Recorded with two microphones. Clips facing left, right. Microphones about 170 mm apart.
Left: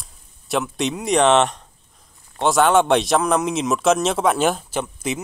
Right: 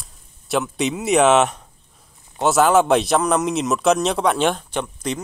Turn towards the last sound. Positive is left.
turn(degrees=5)  # may be behind; listen again after turning